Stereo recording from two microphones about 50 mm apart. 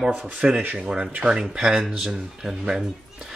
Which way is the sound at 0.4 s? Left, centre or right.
Centre.